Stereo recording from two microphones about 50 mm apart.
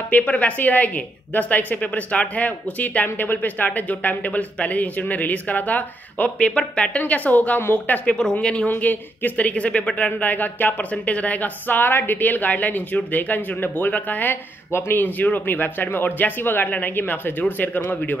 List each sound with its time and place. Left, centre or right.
0.1 s speech: left
6.4 s speech: centre
7.0 s speech: left
8.2 s speech: centre
8.6 s speech: left